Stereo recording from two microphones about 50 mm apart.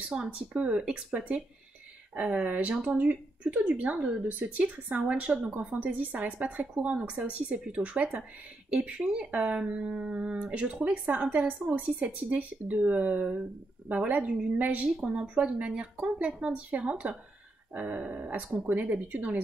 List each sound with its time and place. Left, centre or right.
0.1 s speech: right
3.6 s speech: right